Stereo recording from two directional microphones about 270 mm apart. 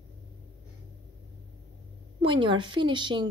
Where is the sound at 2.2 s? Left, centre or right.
Centre.